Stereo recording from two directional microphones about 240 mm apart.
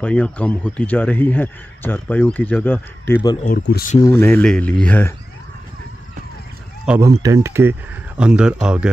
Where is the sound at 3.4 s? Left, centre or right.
Left.